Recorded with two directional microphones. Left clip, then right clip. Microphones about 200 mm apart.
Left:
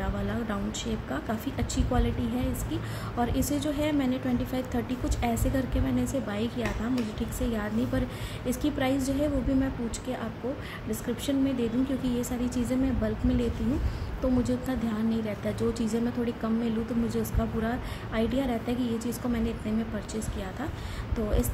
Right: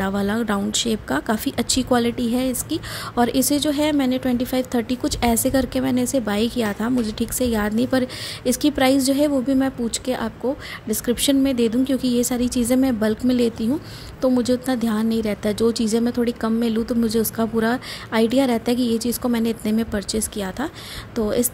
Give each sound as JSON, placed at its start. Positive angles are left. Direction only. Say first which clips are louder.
{"t": 0.0, "sound": "speech", "louder": "right 10 dB", "side_deg": -50}